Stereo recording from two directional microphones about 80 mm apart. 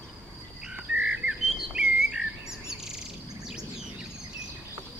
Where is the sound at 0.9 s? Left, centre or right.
Centre.